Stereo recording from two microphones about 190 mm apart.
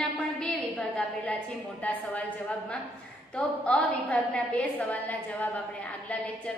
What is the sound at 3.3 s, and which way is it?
A woman's voice, 5° left (ahead or behind).